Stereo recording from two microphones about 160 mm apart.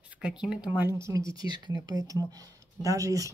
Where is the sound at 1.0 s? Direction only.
20° right (ahead or behind).